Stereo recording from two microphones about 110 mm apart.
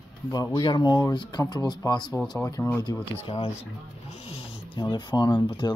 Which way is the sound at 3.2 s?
65° left (ahead or behind).